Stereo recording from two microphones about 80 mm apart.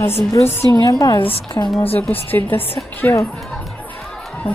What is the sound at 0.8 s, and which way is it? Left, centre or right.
Speech, left.